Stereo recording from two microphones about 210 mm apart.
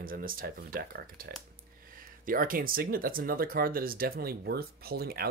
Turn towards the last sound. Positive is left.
turn(degrees=-45)  # may be behind; listen again after turning